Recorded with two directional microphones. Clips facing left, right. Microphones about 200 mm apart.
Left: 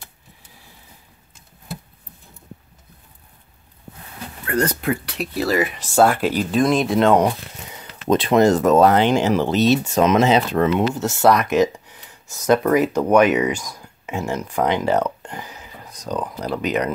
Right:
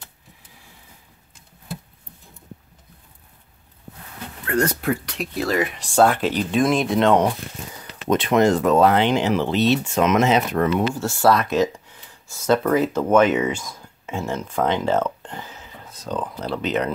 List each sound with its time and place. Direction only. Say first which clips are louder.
4.8 s speech: left 1 dB; 5° left (ahead or behind)
8.1 s speech: left 2 dB; 30° left (ahead or behind)
11.0 s speech: left 2 dB; 20° left (ahead or behind)